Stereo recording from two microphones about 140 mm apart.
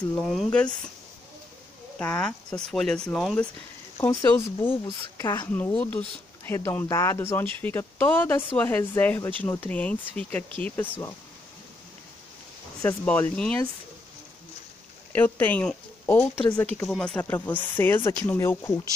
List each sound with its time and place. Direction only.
0.1 s a woman's voice: 5° left (ahead or behind)
2.0 s speech: 10° left (ahead or behind)
4.0 s a woman's voice: 20° left (ahead or behind)
13.0 s a woman's voice: 10° left (ahead or behind)
15.1 s a woman's voice: 15° left (ahead or behind)